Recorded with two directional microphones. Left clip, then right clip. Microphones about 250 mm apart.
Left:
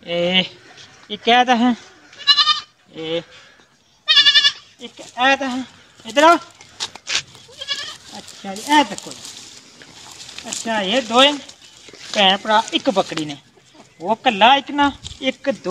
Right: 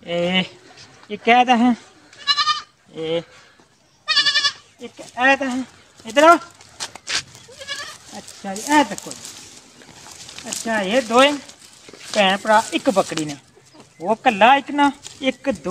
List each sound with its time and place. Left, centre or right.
0.0 s a sound: centre
1.1 s speech: centre
2.1 s goat: centre
3.0 s speech: right
4.0 s goat: centre
4.8 s speech: centre
7.1 s goat: centre
8.1 s sheep: centre
8.6 s speech: centre
10.0 s speech: centre
14.9 s speech: right